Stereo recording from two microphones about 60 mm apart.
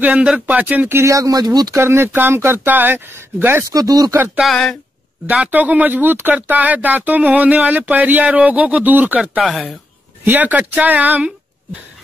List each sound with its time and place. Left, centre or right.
0.0 s speech: centre
1.0 s speech: right
1.8 s speech: right
3.7 s speech: right
4.4 s speech: centre
5.3 s speech: right
9.4 s speech: centre
10.2 s speech: right